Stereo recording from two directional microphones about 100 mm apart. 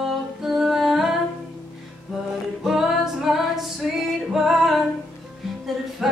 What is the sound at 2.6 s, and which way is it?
Music, 5° right (ahead or behind).